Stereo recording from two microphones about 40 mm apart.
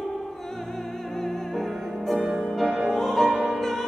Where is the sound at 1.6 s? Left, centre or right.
Centre.